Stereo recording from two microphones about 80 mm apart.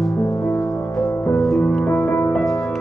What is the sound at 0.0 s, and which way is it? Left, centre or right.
Music, centre.